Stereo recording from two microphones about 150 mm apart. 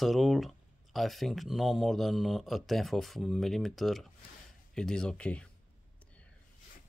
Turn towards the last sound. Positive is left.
turn(degrees=10)  # may be behind; listen again after turning